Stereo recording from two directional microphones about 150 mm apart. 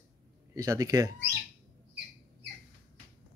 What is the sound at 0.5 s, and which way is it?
Speech, 20° right (ahead or behind).